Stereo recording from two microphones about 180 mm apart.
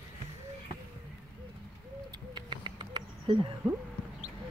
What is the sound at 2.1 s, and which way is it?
Bird, 25° right (ahead or behind).